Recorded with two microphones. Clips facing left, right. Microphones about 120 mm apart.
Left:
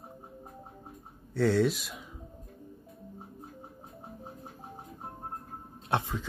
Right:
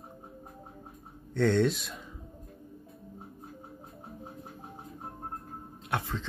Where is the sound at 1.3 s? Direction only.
5° left (ahead or behind).